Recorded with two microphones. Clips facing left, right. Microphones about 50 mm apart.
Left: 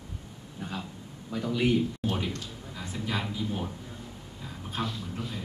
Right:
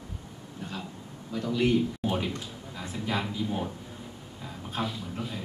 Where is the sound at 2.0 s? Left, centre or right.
Centre.